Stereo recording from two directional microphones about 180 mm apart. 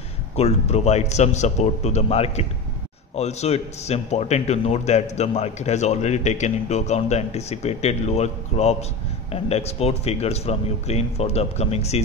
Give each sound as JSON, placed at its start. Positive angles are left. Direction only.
{"t": 0.4, "sound": "a man's voice", "side_deg": 35}